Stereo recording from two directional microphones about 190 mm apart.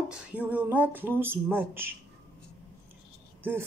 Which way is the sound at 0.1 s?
5° right (ahead or behind).